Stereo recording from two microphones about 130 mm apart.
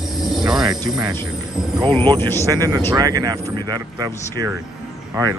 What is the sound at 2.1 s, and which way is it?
Speech, 20° left (ahead or behind).